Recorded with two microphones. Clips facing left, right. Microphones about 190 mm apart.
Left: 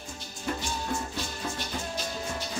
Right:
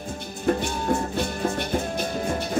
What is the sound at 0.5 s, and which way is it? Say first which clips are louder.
Music: right 9 dB; 55° right (ahead or behind).